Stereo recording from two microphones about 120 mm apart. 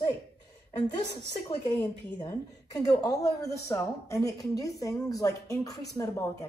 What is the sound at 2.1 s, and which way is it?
A woman's voice, 30° left (ahead or behind).